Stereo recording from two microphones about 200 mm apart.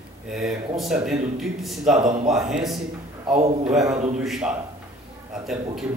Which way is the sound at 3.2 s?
30° right (ahead or behind).